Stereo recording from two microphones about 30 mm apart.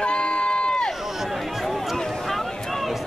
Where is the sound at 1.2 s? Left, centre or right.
Centre.